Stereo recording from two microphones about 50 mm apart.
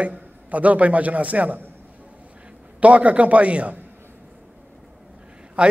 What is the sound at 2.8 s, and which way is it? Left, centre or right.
A man's voice, right.